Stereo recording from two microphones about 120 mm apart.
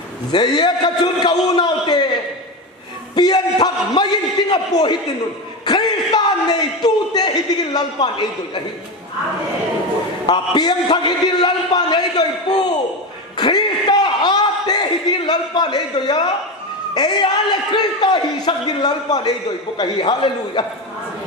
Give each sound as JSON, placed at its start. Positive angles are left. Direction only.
{"t": 0.3, "sound": "a man's voice", "side_deg": 35}
{"t": 3.2, "sound": "a man's voice", "side_deg": 35}
{"t": 10.2, "sound": "a man's voice", "side_deg": 40}
{"t": 13.4, "sound": "a sound", "side_deg": 35}
{"t": 16.9, "sound": "a man's voice", "side_deg": 35}